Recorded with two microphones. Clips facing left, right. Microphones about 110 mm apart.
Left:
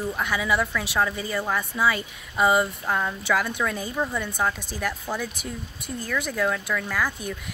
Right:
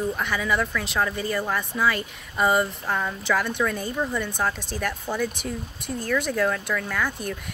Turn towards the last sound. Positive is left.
turn(degrees=5)  # may be behind; listen again after turning